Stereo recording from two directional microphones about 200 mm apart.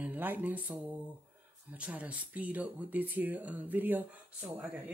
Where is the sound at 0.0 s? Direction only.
10° right (ahead or behind).